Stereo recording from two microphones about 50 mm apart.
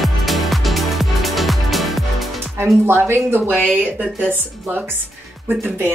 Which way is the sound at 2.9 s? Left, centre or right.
Right.